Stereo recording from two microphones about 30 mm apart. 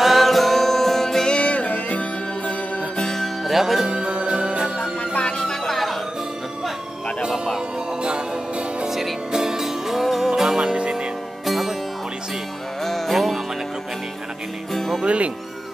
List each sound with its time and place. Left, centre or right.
0.0 s music: centre
1.4 s music: left
3.4 s music: centre
3.9 s music: right
5.5 s music: centre
8.0 s music: right
9.3 s music: centre
12.8 s music: centre
14.7 s music: centre
15.0 s music: right